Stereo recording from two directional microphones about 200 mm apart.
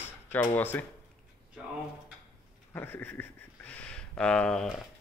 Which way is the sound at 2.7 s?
10° left (ahead or behind).